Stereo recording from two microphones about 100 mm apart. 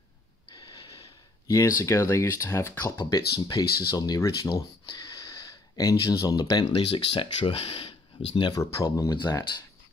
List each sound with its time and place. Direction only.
0.5 s snort: 50° left (ahead or behind)
1.5 s speech: 30° left (ahead or behind)
2.8 s speech: 35° left (ahead or behind)
4.8 s a sound: 40° left (ahead or behind)
6.7 s speech: 65° left (ahead or behind)
8.8 s speech: 40° left (ahead or behind)